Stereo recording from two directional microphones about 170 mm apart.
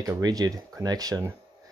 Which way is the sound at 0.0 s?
20° right (ahead or behind).